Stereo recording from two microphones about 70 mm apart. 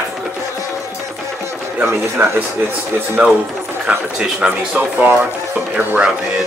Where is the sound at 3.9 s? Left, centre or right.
Centre.